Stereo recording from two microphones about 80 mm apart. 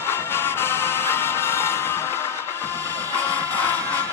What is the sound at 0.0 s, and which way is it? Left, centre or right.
Music, left.